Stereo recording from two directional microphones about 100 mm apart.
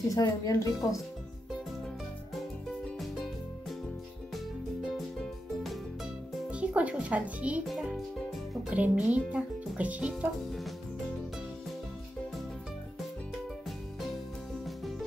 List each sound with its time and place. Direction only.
0.1 s speech: 35° left (ahead or behind)
3.0 s music: centre (ahead or behind)
4.8 s music: 5° left (ahead or behind)
6.5 s speech: 15° right (ahead or behind)
7.6 s a child's voice: centre (ahead or behind)
8.6 s speech: 15° right (ahead or behind)